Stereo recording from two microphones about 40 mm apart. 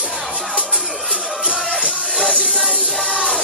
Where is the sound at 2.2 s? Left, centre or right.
Left.